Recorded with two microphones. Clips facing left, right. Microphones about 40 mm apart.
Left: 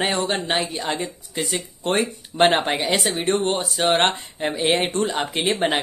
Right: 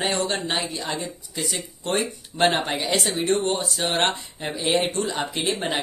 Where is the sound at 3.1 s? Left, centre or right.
Left.